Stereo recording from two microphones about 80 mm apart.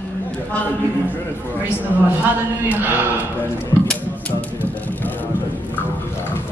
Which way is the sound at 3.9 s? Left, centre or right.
Centre.